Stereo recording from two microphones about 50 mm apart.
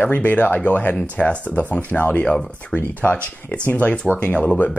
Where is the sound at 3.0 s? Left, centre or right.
Left.